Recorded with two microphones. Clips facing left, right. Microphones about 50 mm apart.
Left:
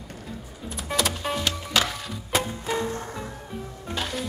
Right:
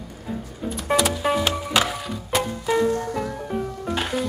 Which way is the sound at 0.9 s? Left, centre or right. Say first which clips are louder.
Right 6 dB; centre.